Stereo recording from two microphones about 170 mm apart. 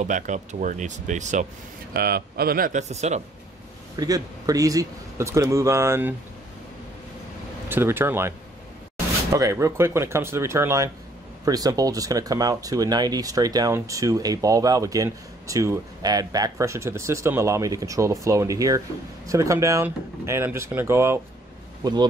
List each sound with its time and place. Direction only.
0.0 s speech: 45° right (ahead or behind)
2.0 s speech: 65° right (ahead or behind); by 3.2 s 40° right (ahead or behind)
3.9 s speech: 20° right (ahead or behind)
7.6 s speech: 15° right (ahead or behind)